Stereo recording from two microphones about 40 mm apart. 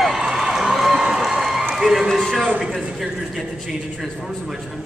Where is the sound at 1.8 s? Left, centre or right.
Centre.